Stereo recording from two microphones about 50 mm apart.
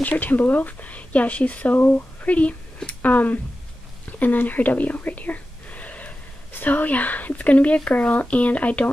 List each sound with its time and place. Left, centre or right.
0.0 s speech: left